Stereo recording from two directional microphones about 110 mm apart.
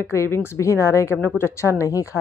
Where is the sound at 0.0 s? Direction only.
25° left (ahead or behind).